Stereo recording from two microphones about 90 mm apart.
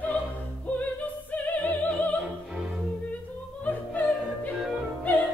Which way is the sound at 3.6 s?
15° left (ahead or behind).